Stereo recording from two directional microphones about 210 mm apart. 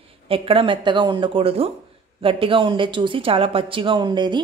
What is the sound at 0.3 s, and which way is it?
Speech, 25° right (ahead or behind).